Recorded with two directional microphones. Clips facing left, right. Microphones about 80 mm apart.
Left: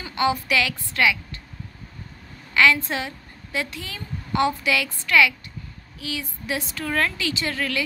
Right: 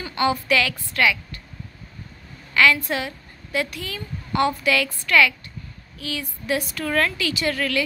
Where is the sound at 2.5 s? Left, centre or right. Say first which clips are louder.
Even; left.